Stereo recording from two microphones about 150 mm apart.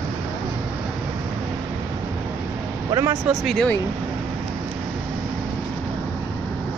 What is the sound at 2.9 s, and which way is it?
Speech, 25° right (ahead or behind).